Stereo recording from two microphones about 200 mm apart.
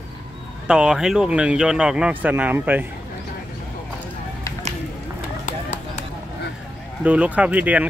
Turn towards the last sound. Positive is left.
turn(degrees=-5)  # may be behind; listen again after turning